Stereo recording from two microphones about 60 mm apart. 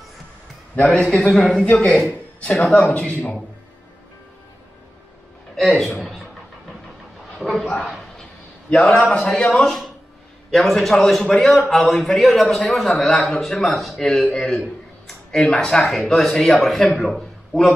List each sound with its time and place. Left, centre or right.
0.7 s a man's voice: left; by 1.7 s centre
1.7 s a man's voice: left
2.6 s a man's voice: centre
2.9 s speech: centre
5.6 s a man's voice: centre
7.3 s a man's voice: centre
9.5 s a man's voice: centre
15.0 s a sound: centre
15.6 s a man's voice: centre